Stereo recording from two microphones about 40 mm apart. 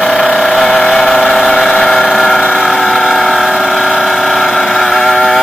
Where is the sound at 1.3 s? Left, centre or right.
Centre.